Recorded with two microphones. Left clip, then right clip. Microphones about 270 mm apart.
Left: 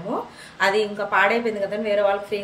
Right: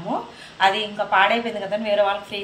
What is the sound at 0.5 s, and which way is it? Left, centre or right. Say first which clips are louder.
A woman's voice: right 1 dB; centre.